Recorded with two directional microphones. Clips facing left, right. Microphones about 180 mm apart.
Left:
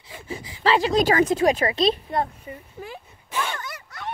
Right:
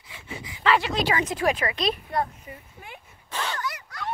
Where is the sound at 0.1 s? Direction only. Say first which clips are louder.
Left 4 dB; 35° left (ahead or behind).